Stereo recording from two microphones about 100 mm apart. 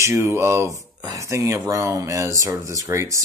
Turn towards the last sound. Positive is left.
turn(degrees=-30)  # may be behind; listen again after turning